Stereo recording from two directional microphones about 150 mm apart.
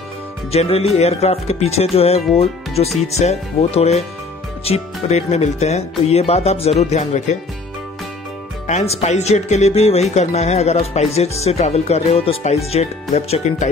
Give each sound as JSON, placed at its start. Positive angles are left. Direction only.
{"t": 0.5, "sound": "speech", "side_deg": 45}
{"t": 8.6, "sound": "speech", "side_deg": 50}